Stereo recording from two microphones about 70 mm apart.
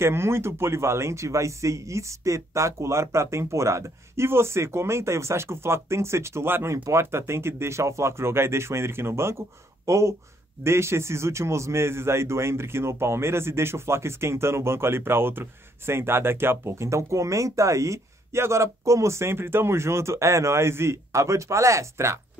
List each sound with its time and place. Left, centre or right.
0.0 s a man's voice: right